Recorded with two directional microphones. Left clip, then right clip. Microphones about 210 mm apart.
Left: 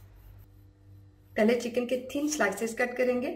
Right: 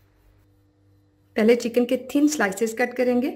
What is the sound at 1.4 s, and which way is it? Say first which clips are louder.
A woman's voice: right 7 dB; 50° right (ahead or behind).